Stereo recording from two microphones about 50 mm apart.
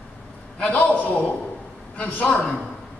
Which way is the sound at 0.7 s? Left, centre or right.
Left.